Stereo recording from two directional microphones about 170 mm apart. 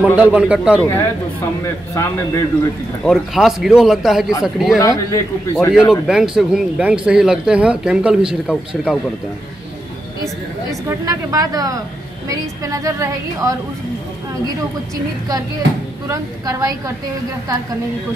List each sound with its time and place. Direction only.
0.0 s a man's voice: 5° right (ahead or behind)
0.8 s a man's voice: 15° left (ahead or behind)
3.0 s speech: centre (ahead or behind)
4.7 s a man's voice: 20° left (ahead or behind)
5.7 s speech: 5° right (ahead or behind)
10.9 s a woman's voice: 20° right (ahead or behind)
16.1 s a woman's voice: 20° right (ahead or behind)